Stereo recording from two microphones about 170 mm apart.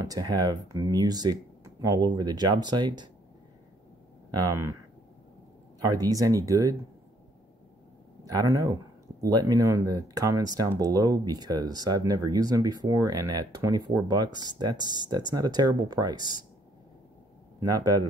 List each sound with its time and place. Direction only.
0.0 s speech: 20° right (ahead or behind)
4.3 s speech: 20° right (ahead or behind)
5.8 s speech: 20° right (ahead or behind)
8.3 s speech: 20° right (ahead or behind)
17.6 s speech: 20° right (ahead or behind)